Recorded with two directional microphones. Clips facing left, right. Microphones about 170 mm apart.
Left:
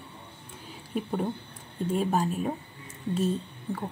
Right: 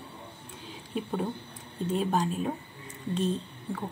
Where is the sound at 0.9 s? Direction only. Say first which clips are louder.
Left 2 dB; 5° left (ahead or behind).